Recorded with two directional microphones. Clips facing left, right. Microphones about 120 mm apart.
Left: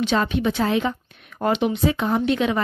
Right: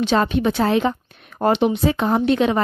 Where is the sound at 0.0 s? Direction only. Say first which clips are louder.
Right 3 dB; 35° right (ahead or behind).